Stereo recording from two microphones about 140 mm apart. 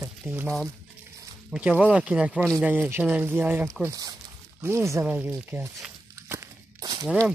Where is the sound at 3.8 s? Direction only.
25° right (ahead or behind).